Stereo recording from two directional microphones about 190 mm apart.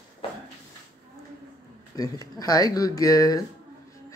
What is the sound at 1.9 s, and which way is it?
Speech, 20° left (ahead or behind).